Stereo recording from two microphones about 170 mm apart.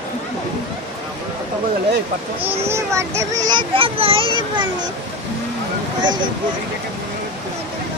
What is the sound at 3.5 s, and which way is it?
A child's voice, 30° right (ahead or behind).